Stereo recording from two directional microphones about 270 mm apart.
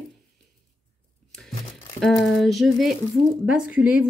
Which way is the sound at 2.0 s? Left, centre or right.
Centre.